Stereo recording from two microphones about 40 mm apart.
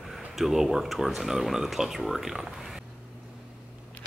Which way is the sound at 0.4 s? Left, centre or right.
Centre.